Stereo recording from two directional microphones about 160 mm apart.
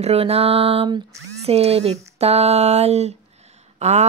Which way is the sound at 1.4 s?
40° right (ahead or behind).